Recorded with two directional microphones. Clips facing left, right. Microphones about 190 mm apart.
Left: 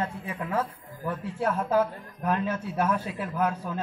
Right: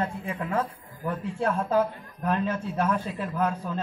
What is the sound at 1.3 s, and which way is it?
Speech, 10° left (ahead or behind).